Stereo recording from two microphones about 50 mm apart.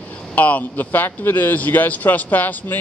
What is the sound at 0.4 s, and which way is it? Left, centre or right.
A man's voice, left.